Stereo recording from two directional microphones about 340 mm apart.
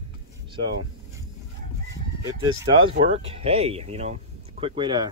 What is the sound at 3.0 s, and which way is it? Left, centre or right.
Speech, centre.